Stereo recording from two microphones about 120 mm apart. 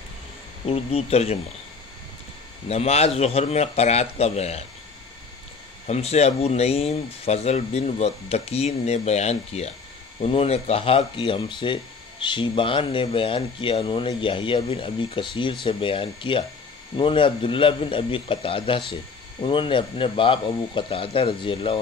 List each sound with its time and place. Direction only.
0.7 s speech: 55° left (ahead or behind)
2.7 s speech: 60° left (ahead or behind)
5.9 s speech: 60° left (ahead or behind); by 21.7 s 45° left (ahead or behind)